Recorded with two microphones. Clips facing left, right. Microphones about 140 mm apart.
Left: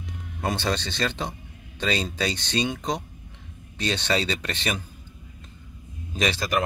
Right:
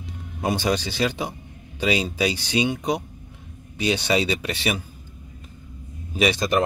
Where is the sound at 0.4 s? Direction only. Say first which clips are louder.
Right 4 dB; 10° right (ahead or behind).